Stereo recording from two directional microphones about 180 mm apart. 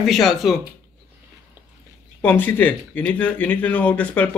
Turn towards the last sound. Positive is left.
turn(degrees=10)  # may be behind; listen again after turning